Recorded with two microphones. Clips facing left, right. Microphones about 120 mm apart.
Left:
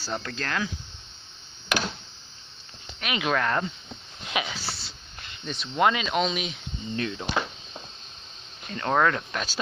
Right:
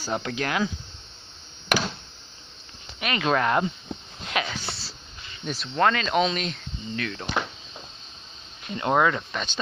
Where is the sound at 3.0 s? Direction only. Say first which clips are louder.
Right 2 dB; 10° left (ahead or behind).